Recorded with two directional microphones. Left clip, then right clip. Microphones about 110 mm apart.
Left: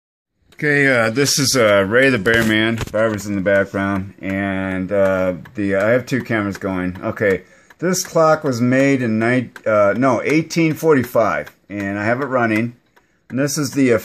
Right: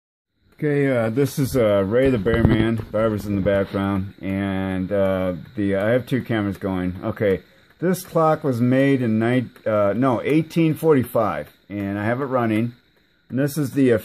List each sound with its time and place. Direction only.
0.6 s speech: 25° right (ahead or behind)
9.2 s speech: 30° right (ahead or behind)